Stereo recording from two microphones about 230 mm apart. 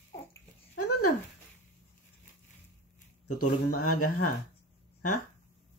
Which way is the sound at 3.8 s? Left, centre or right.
Left.